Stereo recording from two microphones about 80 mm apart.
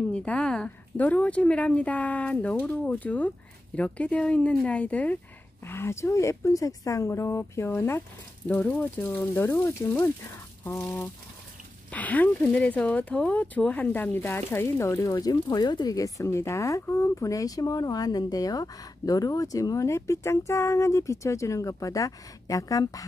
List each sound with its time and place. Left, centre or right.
0.1 s a woman's voice: centre; by 8.0 s left
8.5 s speech: left
9.7 s speech: left
11.9 s speech: centre; by 16.0 s left
16.0 s speech: left